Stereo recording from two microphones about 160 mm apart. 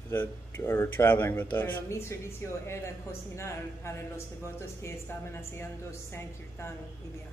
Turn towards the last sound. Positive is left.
turn(degrees=15)  # may be behind; listen again after turning